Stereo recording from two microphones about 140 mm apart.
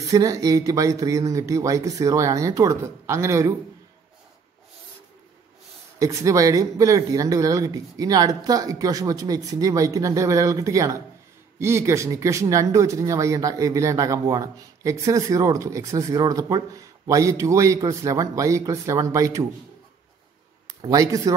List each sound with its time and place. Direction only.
0.1 s speech: 25° right (ahead or behind)
5.9 s speech: 25° right (ahead or behind)
20.6 s speech: 25° right (ahead or behind)